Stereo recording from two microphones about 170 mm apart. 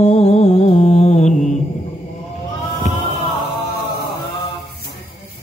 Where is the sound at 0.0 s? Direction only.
40° left (ahead or behind).